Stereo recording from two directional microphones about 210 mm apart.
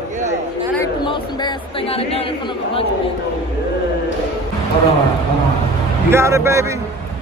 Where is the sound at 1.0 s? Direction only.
25° left (ahead or behind).